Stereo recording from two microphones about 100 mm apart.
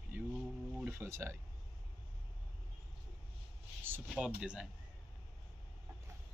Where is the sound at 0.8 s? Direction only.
25° right (ahead or behind).